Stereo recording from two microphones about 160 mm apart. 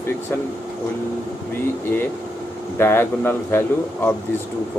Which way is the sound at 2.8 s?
15° left (ahead or behind).